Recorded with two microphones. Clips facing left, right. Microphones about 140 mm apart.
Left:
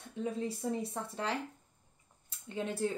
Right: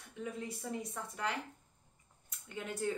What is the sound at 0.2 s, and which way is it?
A woman's voice, 30° left (ahead or behind).